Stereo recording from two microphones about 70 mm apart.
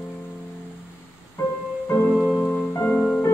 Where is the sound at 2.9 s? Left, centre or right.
Centre.